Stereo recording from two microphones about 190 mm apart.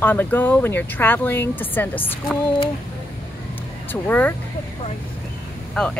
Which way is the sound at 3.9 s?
10° left (ahead or behind).